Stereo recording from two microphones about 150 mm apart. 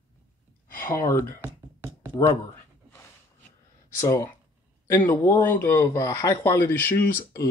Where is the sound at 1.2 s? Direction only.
15° right (ahead or behind).